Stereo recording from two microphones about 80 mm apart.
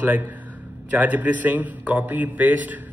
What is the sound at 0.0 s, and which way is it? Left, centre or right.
A man's voice, right.